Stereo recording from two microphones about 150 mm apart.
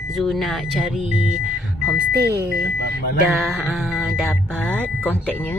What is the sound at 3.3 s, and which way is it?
Speech, centre (ahead or behind).